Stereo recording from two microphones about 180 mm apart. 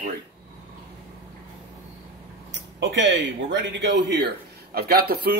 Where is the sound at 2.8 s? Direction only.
90° right; by 4.2 s 70° right (ahead or behind).